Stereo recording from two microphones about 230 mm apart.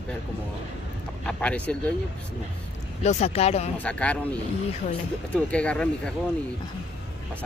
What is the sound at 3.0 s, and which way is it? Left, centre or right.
Speech, left.